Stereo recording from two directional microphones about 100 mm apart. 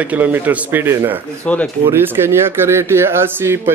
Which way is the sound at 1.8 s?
25° right (ahead or behind).